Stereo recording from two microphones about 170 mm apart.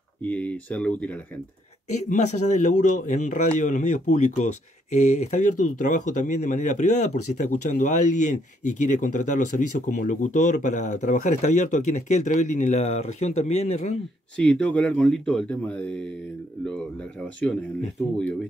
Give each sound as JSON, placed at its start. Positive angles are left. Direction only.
{"t": 0.2, "sound": "speech", "side_deg": 10}
{"t": 1.9, "sound": "speech", "side_deg": 45}
{"t": 14.3, "sound": "speech", "side_deg": 5}